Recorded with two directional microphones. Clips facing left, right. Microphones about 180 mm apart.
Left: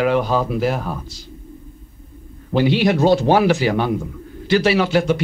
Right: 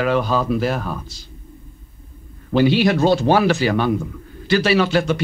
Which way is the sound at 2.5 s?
20° left (ahead or behind).